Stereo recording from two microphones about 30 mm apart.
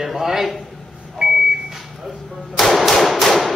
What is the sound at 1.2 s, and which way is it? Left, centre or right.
Microwave oven, right.